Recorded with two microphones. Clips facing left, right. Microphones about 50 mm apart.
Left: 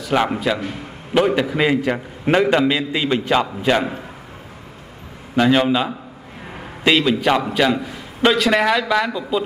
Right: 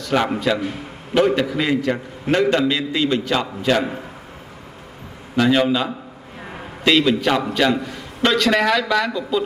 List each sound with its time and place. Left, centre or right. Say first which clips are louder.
0.0 s a man's voice: left 1 dB; centre
5.3 s a man's voice: left 1 dB; centre